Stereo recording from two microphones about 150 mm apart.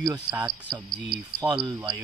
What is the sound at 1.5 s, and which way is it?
Speech, 30° right (ahead or behind).